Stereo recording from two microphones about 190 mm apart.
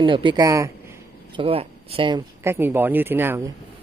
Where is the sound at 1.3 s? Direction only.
30° right (ahead or behind).